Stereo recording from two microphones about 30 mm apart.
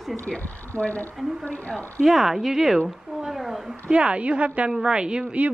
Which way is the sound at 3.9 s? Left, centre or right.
Right.